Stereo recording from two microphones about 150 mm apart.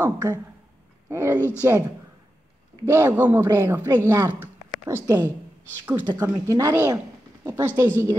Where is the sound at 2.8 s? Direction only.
20° right (ahead or behind).